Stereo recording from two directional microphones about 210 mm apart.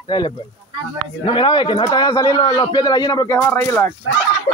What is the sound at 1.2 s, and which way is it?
Speech, 25° left (ahead or behind).